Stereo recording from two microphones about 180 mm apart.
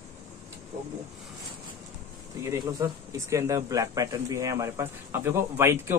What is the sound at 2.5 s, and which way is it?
Speech, 15° right (ahead or behind).